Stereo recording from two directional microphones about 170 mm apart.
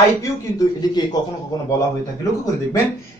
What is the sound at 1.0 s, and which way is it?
Speech, 25° left (ahead or behind).